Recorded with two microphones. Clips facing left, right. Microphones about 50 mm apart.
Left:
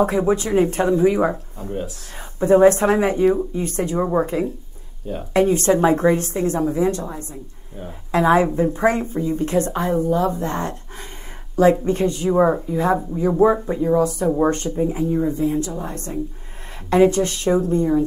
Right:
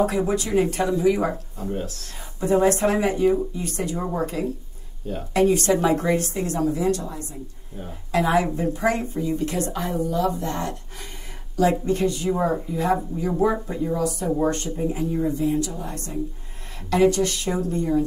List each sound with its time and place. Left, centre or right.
0.0 s speech: left
2.4 s speech: left